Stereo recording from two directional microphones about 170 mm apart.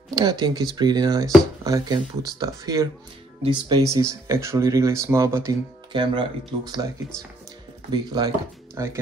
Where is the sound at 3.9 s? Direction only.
15° right (ahead or behind).